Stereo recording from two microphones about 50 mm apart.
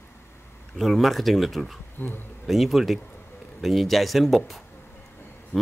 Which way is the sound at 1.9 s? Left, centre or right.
Left.